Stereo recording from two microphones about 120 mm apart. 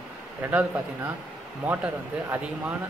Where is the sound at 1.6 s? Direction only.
15° right (ahead or behind).